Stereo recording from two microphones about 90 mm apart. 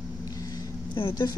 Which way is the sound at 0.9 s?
60° left (ahead or behind).